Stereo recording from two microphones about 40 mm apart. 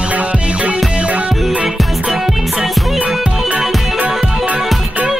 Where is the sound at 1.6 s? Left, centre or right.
Centre.